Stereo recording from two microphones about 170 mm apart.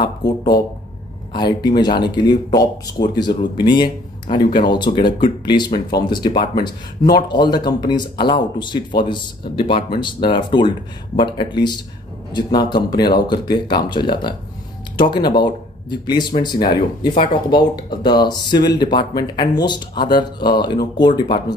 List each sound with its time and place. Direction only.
1.3 s speech: 25° left (ahead or behind)